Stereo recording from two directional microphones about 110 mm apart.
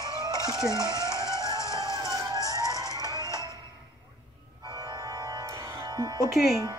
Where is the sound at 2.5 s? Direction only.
35° right (ahead or behind).